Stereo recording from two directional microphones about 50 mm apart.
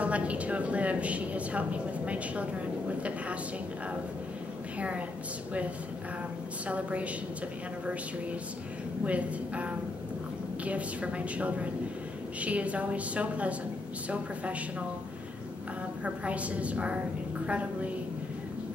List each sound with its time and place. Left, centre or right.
0.0 s a woman's voice: right
4.7 s a woman's voice: right
6.7 s a woman's voice: right
9.0 s a woman's voice: right
16.0 s a woman's voice: right